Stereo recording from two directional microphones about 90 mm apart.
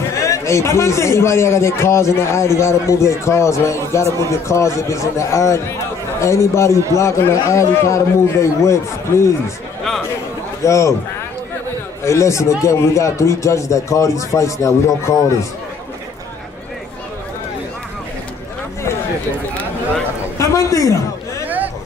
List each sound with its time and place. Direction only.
0.1 s a man's voice: 35° left (ahead or behind)
10.6 s a man's voice: 35° left (ahead or behind)
12.0 s a man's voice: 30° left (ahead or behind)
20.3 s a sound: 35° left (ahead or behind)